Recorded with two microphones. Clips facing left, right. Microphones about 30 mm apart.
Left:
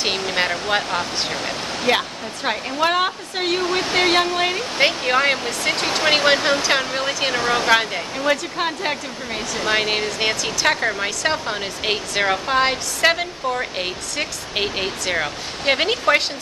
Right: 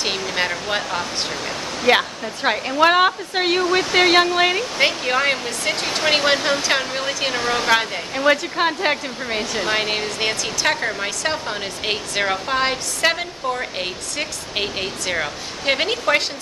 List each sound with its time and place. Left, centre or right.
0.4 s speech: centre
1.9 s speech: centre
4.7 s speech: centre
8.1 s speech: centre
9.7 s speech: centre